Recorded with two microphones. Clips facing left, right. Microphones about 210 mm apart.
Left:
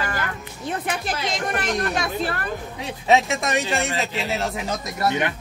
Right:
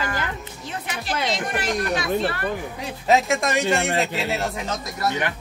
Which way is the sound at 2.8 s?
Centre (ahead or behind).